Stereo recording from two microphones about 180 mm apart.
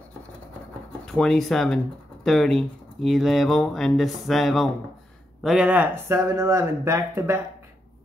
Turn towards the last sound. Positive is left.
turn(degrees=-15)  # may be behind; listen again after turning